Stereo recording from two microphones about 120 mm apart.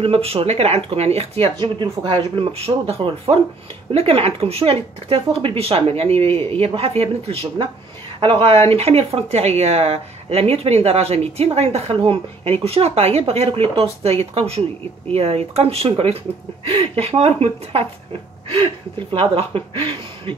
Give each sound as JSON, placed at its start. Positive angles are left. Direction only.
{"t": 0.0, "sound": "speech", "side_deg": -50}
{"t": 8.7, "sound": "speech", "side_deg": -60}
{"t": 19.1, "sound": "speech", "side_deg": -50}